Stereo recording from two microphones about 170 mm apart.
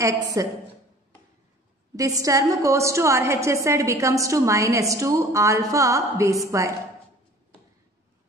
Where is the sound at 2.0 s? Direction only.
20° right (ahead or behind).